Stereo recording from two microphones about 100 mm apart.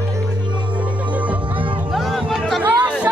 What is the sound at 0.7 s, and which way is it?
Music, 15° right (ahead or behind).